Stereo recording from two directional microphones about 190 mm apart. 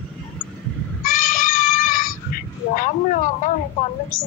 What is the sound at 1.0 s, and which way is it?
Goat, 45° left (ahead or behind).